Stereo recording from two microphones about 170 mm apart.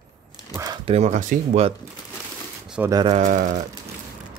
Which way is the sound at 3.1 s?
50° right (ahead or behind).